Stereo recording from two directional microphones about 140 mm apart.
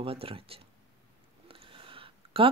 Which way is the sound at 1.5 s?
40° right (ahead or behind).